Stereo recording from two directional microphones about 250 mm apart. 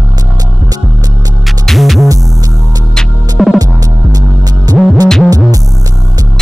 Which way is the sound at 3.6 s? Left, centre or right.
Centre.